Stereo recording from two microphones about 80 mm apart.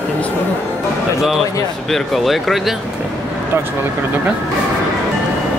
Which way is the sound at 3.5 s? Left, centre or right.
Right.